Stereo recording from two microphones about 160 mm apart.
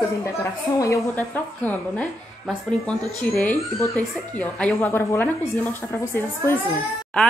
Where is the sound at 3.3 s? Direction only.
10° left (ahead or behind).